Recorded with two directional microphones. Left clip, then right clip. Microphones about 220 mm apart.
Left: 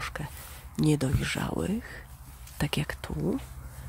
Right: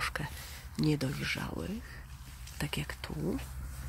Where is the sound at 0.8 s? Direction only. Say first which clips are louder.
Left 5 dB; 20° left (ahead or behind).